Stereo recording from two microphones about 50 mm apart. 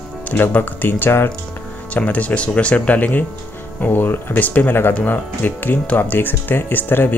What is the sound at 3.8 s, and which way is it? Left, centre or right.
Speech, left.